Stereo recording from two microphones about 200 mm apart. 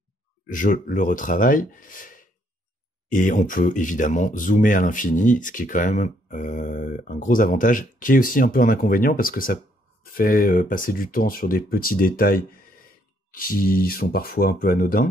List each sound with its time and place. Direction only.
0.5 s speech: 40° left (ahead or behind)